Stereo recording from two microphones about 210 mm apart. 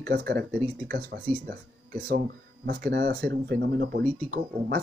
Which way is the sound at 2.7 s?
50° right (ahead or behind).